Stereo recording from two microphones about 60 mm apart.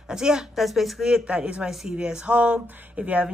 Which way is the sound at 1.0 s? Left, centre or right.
Centre.